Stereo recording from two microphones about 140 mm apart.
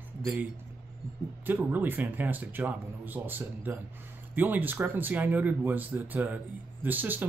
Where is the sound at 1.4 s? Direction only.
15° right (ahead or behind).